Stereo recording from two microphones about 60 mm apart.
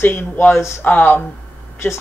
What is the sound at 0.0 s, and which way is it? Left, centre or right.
Speech, left.